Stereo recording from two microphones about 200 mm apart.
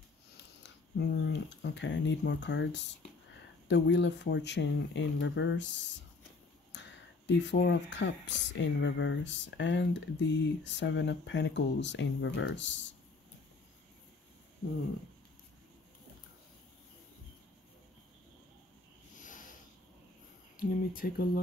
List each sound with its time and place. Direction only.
0.4 s a sound: 60° left (ahead or behind)
3.6 s speech: 60° left (ahead or behind)
20.5 s speech: 45° left (ahead or behind)